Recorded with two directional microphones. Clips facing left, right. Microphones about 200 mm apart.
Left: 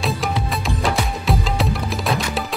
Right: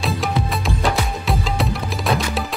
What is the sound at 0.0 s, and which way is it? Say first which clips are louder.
Music: right 1 dB; centre (ahead or behind).